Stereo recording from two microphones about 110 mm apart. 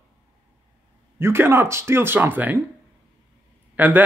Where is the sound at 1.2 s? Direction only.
20° right (ahead or behind).